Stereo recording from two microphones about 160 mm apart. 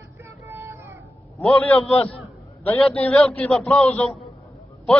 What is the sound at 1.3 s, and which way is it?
Speech, 10° left (ahead or behind).